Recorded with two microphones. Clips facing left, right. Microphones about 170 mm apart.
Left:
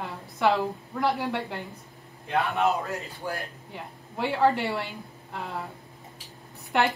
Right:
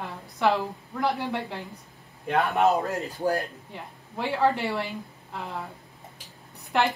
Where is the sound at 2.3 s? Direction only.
40° right (ahead or behind).